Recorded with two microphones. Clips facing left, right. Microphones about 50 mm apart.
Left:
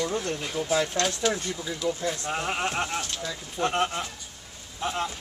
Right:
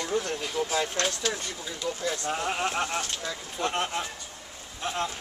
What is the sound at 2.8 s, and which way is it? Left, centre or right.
Speech, centre.